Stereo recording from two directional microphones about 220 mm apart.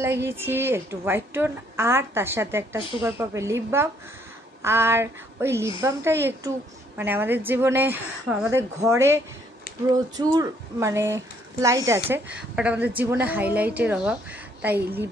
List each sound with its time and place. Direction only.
0.0 s speech: 10° right (ahead or behind)
9.7 s a sound: 45° left (ahead or behind)
10.3 s speech: 15° right (ahead or behind)